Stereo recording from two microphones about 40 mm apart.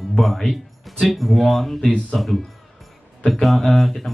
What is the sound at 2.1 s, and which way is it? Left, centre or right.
Speech, centre.